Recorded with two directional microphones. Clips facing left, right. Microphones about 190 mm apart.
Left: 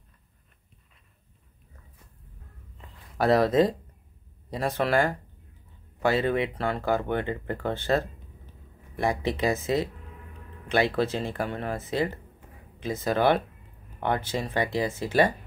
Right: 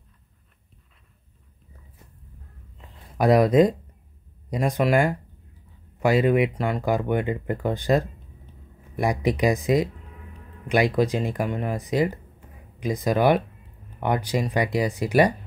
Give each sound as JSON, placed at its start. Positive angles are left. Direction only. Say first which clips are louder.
{"t": 3.2, "sound": "speech", "louder": "right 4 dB", "side_deg": -15}
{"t": 6.0, "sound": "speech", "louder": "right 5 dB", "side_deg": 30}
{"t": 6.5, "sound": "speech", "louder": "right 2 dB", "side_deg": -15}